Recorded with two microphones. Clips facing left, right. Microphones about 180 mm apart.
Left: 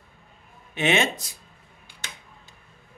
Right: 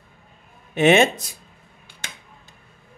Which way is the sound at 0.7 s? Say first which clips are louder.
Right 8 dB; 50° right (ahead or behind).